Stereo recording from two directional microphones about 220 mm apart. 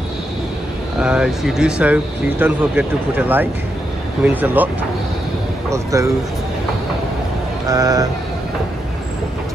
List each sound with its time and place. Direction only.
1.0 s speech: 5° right (ahead or behind)
5.7 s speech: 15° right (ahead or behind)
7.6 s speech: 15° right (ahead or behind)